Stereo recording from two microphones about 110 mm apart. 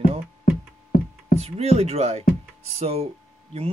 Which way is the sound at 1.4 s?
70° right (ahead or behind).